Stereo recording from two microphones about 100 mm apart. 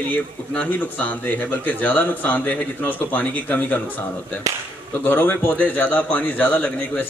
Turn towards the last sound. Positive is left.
turn(degrees=15)  # may be behind; listen again after turning